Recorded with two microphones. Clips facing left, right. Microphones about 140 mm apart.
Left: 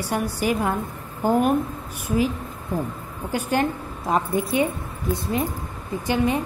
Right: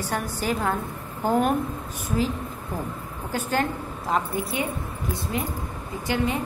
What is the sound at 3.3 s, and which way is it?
A woman's voice, 15° left (ahead or behind).